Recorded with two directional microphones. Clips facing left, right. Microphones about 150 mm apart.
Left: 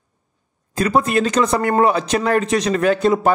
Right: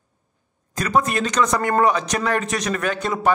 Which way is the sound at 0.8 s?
30° left (ahead or behind).